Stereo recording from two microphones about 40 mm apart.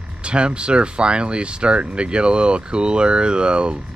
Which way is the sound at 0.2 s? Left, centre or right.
Right.